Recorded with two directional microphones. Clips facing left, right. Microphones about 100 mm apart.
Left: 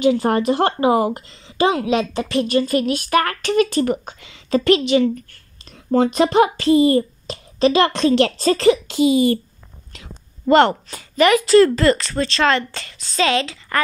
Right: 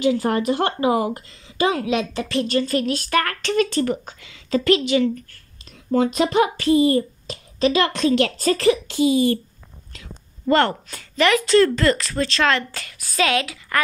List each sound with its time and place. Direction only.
0.0 s a child's voice: 25° left (ahead or behind)
1.1 s a woman's voice: 25° left (ahead or behind)
5.9 s a child's voice: 40° left (ahead or behind); by 9.4 s 20° left (ahead or behind)
9.9 s a sound: 20° left (ahead or behind)
10.9 s a woman's voice: 5° left (ahead or behind)